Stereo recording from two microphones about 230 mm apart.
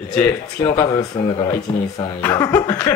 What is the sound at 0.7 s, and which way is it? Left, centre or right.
Speech, centre.